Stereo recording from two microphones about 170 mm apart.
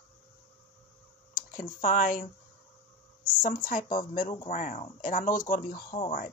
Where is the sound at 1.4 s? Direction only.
55° left (ahead or behind).